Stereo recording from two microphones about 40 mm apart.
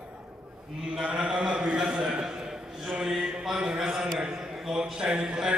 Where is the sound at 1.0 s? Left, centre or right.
Right.